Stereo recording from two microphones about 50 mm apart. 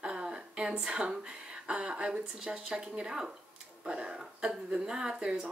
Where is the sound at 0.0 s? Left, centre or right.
Centre.